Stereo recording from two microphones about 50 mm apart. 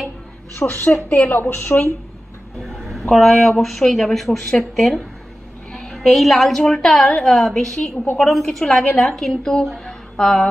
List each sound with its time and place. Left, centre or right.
0.6 s a woman's voice: left
2.7 s a woman's voice: centre
9.8 s a sound: centre